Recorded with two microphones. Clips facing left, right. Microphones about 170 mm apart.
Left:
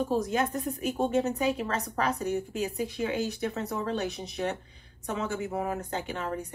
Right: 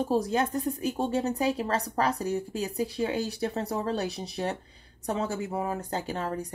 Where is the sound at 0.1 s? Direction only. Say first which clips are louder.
Right 2 dB; 35° right (ahead or behind).